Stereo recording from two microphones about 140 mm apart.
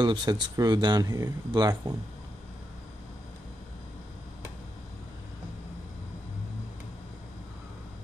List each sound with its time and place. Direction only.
0.0 s speech: 30° right (ahead or behind)